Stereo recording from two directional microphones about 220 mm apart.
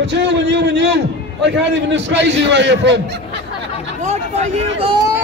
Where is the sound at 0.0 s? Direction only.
55° right (ahead or behind).